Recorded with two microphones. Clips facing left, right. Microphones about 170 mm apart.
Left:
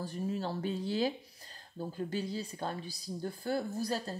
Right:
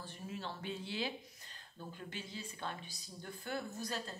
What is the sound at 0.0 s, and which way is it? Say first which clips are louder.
Speech: left 10 dB; 40° left (ahead or behind).